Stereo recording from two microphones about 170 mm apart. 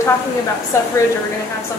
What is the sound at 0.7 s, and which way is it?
Speech, 15° left (ahead or behind).